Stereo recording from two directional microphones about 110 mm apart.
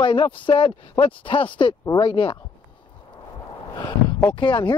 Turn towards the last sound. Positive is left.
turn(degrees=45)  # may be behind; listen again after turning